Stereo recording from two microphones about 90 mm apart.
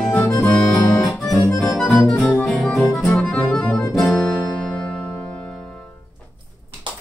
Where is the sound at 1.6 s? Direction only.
5° left (ahead or behind).